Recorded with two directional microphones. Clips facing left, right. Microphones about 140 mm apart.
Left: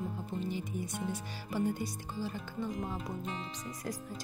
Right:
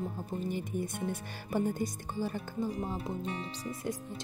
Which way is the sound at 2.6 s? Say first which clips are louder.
Right 2 dB; 30° right (ahead or behind).